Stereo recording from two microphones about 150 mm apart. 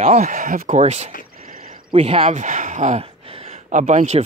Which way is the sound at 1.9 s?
40° right (ahead or behind).